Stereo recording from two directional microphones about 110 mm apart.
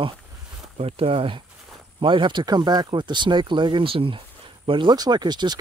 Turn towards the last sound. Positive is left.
turn(degrees=-40)  # may be behind; listen again after turning